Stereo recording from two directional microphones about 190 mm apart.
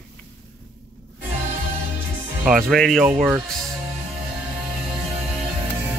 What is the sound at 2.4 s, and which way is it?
Speech, centre (ahead or behind).